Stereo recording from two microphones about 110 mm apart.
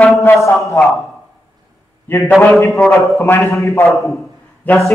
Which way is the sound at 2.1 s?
20° left (ahead or behind).